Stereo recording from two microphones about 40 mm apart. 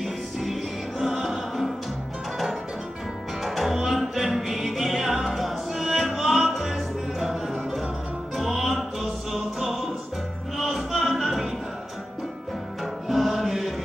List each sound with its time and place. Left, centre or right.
0.0 s music: centre
3.4 s music: centre
13.1 s music: centre